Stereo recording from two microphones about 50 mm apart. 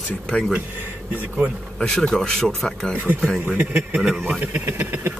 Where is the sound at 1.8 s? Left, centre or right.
Centre.